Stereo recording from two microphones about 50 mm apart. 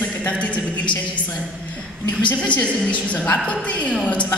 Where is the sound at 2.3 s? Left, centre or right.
Left.